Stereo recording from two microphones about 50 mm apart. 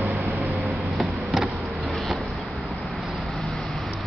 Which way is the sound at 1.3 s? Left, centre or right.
Centre.